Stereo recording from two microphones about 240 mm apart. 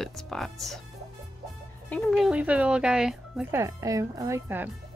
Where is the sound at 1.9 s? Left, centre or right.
Centre.